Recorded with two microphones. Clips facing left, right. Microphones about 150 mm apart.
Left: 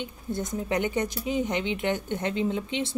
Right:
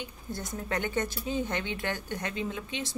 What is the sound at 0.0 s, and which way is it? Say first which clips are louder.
A woman's voice: left 6 dB; 20° left (ahead or behind).